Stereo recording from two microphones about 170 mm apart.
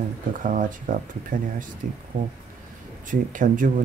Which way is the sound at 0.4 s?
50° right (ahead or behind).